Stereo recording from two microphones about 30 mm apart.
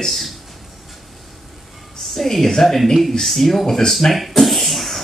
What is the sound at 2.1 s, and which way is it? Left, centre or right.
Speech, centre.